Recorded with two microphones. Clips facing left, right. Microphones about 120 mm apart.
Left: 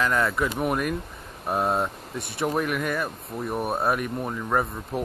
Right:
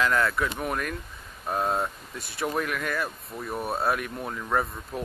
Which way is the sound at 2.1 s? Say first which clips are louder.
Left 6 dB; 60° left (ahead or behind).